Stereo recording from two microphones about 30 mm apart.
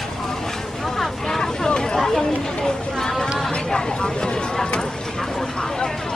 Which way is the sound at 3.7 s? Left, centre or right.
Left.